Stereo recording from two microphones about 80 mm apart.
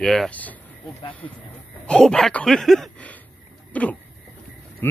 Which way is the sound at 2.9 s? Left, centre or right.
Centre.